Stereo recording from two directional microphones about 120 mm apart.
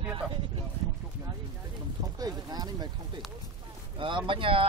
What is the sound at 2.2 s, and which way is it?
Speech, 35° right (ahead or behind).